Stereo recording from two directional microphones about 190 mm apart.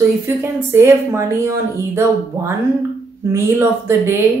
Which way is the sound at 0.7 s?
15° right (ahead or behind).